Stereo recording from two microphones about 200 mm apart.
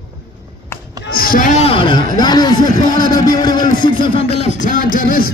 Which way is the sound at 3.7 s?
25° left (ahead or behind).